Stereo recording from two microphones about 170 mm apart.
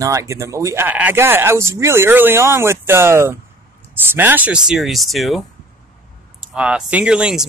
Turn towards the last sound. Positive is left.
turn(degrees=-5)  # may be behind; listen again after turning